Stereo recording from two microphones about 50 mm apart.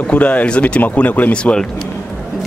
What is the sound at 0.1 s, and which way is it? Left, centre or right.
Speech, left.